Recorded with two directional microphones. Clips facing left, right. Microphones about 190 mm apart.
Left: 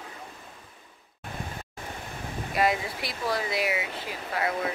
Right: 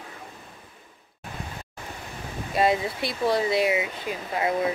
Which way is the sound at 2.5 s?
25° right (ahead or behind).